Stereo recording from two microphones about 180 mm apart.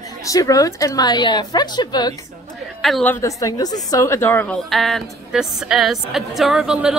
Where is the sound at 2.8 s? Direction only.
5° left (ahead or behind).